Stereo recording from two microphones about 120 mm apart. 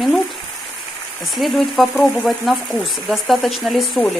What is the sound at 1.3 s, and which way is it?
Speech, centre (ahead or behind).